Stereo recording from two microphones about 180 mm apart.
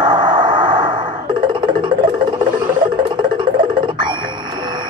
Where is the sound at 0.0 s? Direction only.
25° right (ahead or behind).